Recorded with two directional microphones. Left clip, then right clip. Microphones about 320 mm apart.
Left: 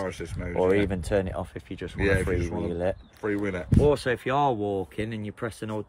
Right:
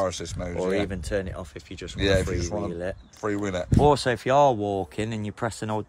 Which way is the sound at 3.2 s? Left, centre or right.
Centre.